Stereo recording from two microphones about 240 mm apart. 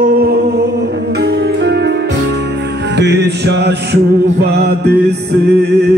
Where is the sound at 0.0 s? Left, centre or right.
Right.